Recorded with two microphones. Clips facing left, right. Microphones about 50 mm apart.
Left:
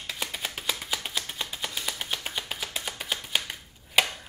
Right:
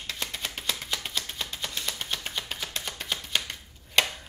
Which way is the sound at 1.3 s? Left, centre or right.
Centre.